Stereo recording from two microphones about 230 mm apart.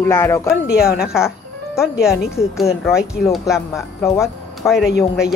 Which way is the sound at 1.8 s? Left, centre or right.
Centre.